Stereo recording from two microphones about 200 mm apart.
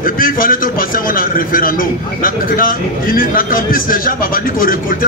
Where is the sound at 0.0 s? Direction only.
45° left (ahead or behind).